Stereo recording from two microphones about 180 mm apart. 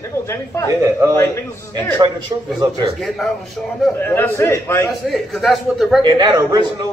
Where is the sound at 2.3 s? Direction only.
20° right (ahead or behind).